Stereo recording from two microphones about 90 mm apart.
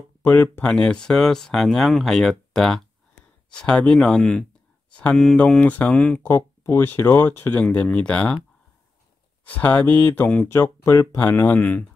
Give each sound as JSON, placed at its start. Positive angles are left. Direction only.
{"t": 0.2, "sound": "speech", "side_deg": 20}
{"t": 5.6, "sound": "speech", "side_deg": 15}
{"t": 6.2, "sound": "speech", "side_deg": 30}
{"t": 9.4, "sound": "speech", "side_deg": 15}
{"t": 10.5, "sound": "speech", "side_deg": 30}
{"t": 11.1, "sound": "speech", "side_deg": 20}